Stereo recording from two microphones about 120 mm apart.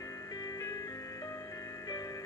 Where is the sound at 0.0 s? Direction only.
30° left (ahead or behind).